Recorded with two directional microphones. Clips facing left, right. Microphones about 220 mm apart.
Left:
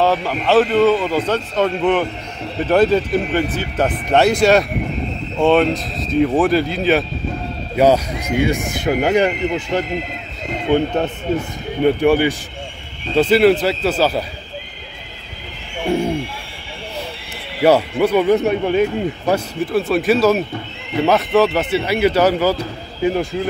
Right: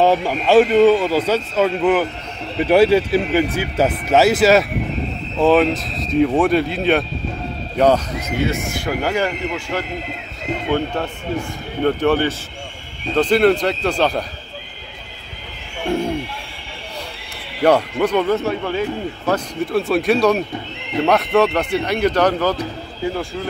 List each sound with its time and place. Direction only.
0.0 s a man's voice: 15° right (ahead or behind); by 14.2 s 5° left (ahead or behind)
17.6 s speech: 5° left (ahead or behind)
19.6 s speech: centre (ahead or behind)
23.0 s speech: 20° left (ahead or behind)